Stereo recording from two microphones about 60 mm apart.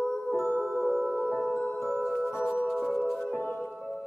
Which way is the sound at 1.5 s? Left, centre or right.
Left.